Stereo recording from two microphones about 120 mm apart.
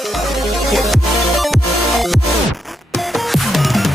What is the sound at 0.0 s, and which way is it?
Music, centre (ahead or behind).